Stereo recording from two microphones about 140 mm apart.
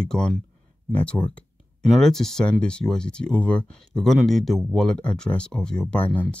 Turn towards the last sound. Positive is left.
turn(degrees=10)  # may be behind; listen again after turning